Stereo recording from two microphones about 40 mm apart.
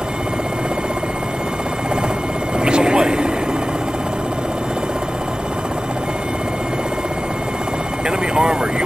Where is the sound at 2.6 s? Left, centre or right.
Right.